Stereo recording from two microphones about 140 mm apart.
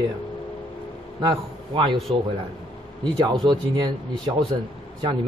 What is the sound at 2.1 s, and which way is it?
Speech, 35° right (ahead or behind).